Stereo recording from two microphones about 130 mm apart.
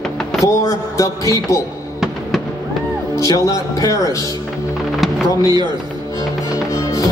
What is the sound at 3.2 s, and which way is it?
Speech, 25° left (ahead or behind).